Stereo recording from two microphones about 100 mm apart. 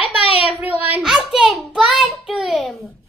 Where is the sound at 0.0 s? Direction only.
15° right (ahead or behind).